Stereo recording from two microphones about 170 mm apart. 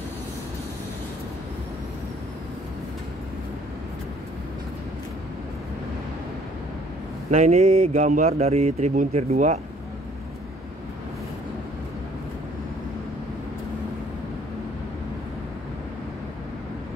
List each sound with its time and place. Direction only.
7.2 s a man's voice: 40° right (ahead or behind)